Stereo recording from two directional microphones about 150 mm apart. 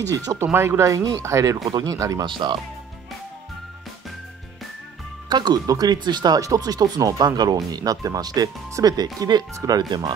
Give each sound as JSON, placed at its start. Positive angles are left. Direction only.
{"t": 0.1, "sound": "speech", "side_deg": -20}
{"t": 5.3, "sound": "speech", "side_deg": -25}